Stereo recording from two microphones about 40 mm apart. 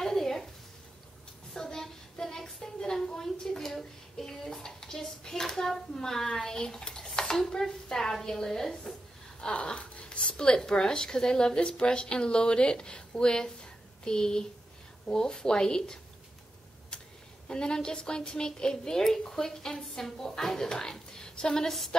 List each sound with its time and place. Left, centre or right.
0.0 s a sound: centre
1.5 s a sound: centre
8.4 s a woman's voice: centre
9.5 s a woman's voice: left
17.5 s a woman's voice: left
21.6 s a woman's voice: centre